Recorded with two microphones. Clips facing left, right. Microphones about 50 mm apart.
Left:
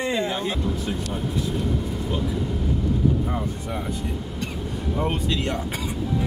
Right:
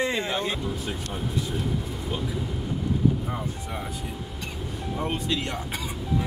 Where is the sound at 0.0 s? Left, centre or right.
Right.